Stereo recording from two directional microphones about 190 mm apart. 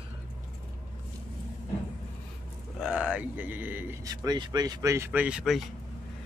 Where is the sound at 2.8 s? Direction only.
5° right (ahead or behind).